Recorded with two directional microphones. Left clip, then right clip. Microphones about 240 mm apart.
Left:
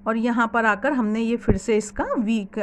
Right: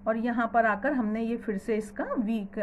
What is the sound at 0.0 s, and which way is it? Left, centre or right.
A woman's voice, left.